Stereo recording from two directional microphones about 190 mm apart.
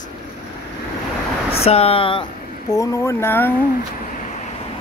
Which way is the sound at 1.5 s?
30° left (ahead or behind).